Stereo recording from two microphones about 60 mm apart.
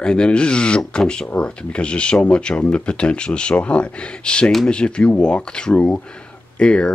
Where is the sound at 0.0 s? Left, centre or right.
Centre.